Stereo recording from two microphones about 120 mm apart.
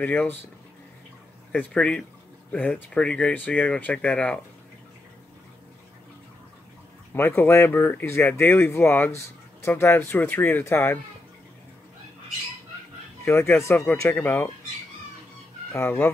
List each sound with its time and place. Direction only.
0.0 s speech: 15° left (ahead or behind)
1.5 s speech: 10° left (ahead or behind)
7.2 s speech: 20° left (ahead or behind)
13.2 s speech: 20° left (ahead or behind)
15.7 s speech: 20° left (ahead or behind)